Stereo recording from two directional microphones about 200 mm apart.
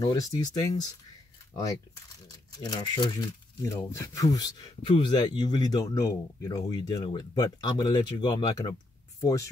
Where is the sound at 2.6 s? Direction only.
20° left (ahead or behind).